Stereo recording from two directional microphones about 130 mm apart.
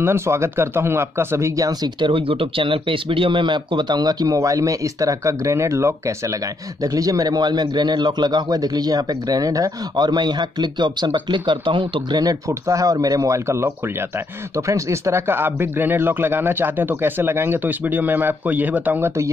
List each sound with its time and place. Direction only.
0.0 s a man's voice: 20° right (ahead or behind)